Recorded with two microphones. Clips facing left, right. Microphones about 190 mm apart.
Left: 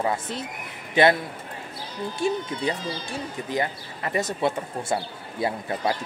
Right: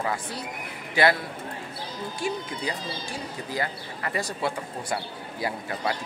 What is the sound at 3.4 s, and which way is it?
Speech, 20° left (ahead or behind).